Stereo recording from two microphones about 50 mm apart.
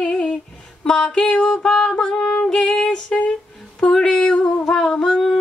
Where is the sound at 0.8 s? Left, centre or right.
Centre.